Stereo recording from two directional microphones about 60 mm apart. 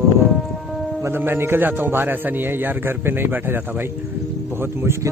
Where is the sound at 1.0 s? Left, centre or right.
Right.